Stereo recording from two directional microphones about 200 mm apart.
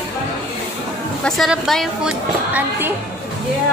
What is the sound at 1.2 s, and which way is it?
A woman's voice, centre (ahead or behind).